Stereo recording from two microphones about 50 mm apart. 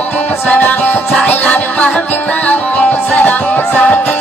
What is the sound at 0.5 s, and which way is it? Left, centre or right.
Music, left.